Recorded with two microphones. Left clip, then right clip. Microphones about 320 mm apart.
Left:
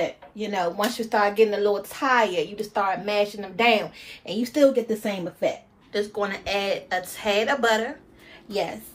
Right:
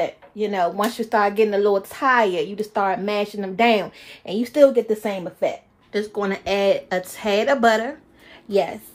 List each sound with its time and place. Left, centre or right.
0.4 s speech: right